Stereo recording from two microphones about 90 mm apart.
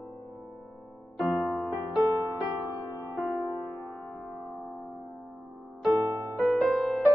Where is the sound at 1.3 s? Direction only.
5° right (ahead or behind).